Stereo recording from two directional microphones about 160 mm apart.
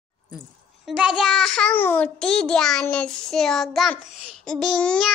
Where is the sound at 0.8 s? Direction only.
5° right (ahead or behind).